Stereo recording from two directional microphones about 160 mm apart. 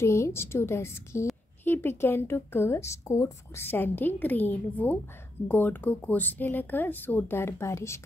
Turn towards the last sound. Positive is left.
turn(degrees=15)  # may be behind; listen again after turning